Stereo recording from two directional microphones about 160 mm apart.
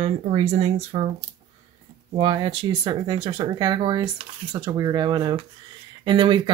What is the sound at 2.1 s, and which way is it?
Speech, 30° right (ahead or behind).